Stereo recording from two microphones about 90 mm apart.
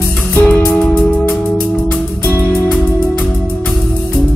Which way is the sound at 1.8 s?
20° left (ahead or behind).